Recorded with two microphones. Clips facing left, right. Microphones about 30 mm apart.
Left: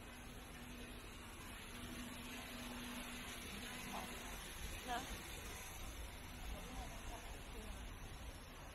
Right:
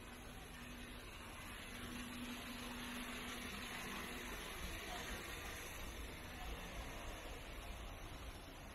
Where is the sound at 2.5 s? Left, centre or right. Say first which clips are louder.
Right 1 dB; centre.